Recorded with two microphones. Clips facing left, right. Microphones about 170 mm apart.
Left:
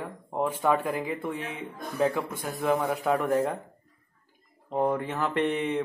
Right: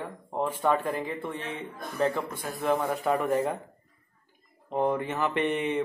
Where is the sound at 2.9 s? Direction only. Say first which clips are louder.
Left 1 dB; centre (ahead or behind).